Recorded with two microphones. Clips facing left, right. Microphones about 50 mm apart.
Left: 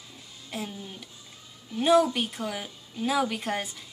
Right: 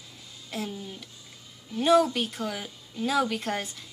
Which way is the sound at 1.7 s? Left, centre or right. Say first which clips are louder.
Even; centre.